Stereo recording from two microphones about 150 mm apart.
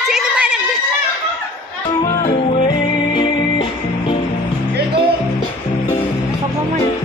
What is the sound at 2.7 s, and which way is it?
Music, 30° left (ahead or behind).